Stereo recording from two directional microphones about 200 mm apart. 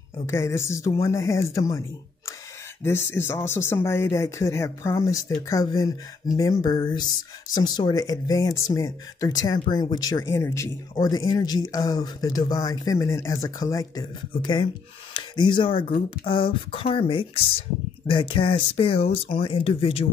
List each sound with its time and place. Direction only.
0.3 s speech: 10° left (ahead or behind); by 20.1 s 30° left (ahead or behind)